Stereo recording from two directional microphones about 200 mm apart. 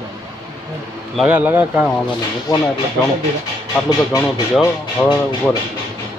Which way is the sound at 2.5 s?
20° left (ahead or behind).